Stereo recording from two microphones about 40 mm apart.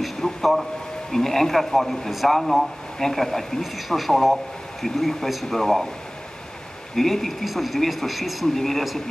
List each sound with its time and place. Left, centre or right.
0.2 s a sound: left
1.1 s speech: centre
7.0 s speech: centre